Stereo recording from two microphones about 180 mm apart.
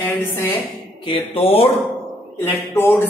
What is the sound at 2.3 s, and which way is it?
Speech, 10° left (ahead or behind).